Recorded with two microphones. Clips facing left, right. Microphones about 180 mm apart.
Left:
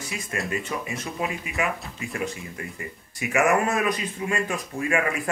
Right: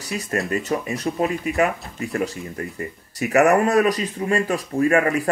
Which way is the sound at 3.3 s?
40° right (ahead or behind).